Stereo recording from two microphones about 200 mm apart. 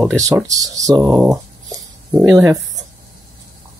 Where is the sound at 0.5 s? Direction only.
15° right (ahead or behind).